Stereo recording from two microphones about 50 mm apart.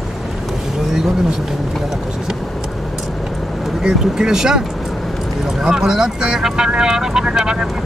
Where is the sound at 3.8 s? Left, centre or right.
Centre.